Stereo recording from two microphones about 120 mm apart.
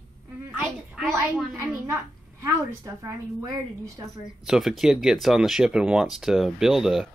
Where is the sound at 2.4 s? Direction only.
25° right (ahead or behind).